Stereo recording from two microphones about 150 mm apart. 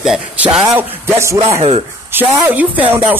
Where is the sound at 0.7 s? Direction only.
15° right (ahead or behind).